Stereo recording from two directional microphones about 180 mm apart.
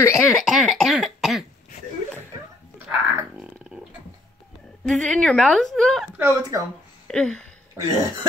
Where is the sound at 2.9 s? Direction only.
5° right (ahead or behind).